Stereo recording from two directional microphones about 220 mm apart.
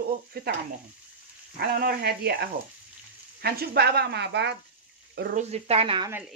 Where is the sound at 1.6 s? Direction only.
45° right (ahead or behind).